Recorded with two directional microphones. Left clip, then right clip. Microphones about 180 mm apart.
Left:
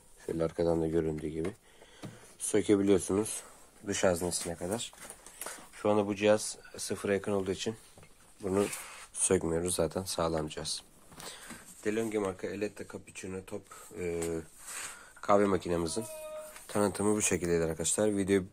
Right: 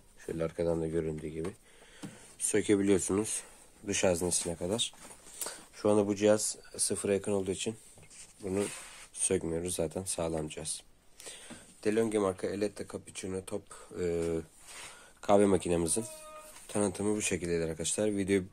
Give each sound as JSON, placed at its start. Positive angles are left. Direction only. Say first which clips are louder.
{"t": 0.3, "sound": "speech", "louder": "left 2 dB", "side_deg": 5}
{"t": 2.5, "sound": "speech", "louder": "left 1 dB", "side_deg": 0}
{"t": 4.6, "sound": "speech", "louder": "right 3 dB", "side_deg": -30}
{"t": 9.2, "sound": "speech", "louder": "left 3 dB", "side_deg": 5}
{"t": 11.8, "sound": "speech", "louder": "right 3 dB", "side_deg": -30}
{"t": 16.6, "sound": "speech", "louder": "left 2 dB", "side_deg": 0}